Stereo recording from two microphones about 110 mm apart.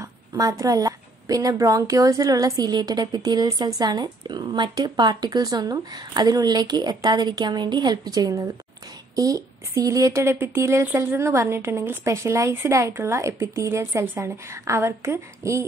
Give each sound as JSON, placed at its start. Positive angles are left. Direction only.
{"t": 0.0, "sound": "a woman's voice", "side_deg": -30}